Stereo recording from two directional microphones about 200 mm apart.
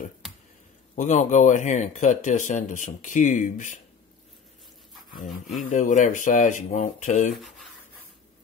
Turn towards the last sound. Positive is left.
turn(degrees=40)  # may be behind; listen again after turning